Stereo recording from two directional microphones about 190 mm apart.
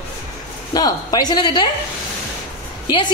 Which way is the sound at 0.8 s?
20° left (ahead or behind).